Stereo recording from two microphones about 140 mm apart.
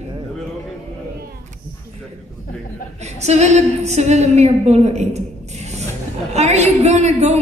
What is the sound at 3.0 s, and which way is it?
A woman's voice, 50° right (ahead or behind).